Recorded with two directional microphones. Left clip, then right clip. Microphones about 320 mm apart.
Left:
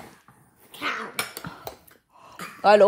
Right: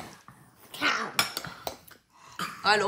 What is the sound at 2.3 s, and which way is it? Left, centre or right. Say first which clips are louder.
Dog: left 7 dB; centre.